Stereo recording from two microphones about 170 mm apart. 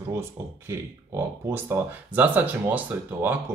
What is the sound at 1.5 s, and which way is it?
Speech, 10° right (ahead or behind).